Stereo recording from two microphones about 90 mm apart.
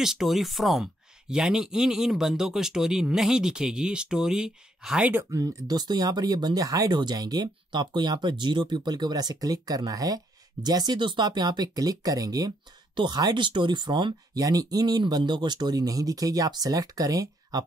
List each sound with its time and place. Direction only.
0.0 s speech: 5° right (ahead or behind)
5.3 s speech: 40° right (ahead or behind); by 14.4 s 55° right (ahead or behind)
14.4 s speech: 45° right (ahead or behind)